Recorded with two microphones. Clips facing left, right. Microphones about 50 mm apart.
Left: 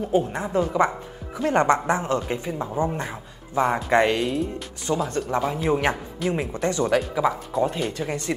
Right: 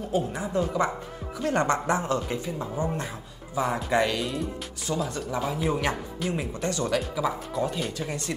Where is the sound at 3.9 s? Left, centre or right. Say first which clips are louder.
Left 5 dB; left.